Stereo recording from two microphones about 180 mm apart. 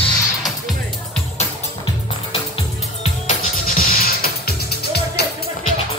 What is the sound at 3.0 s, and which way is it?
Music, 45° left (ahead or behind).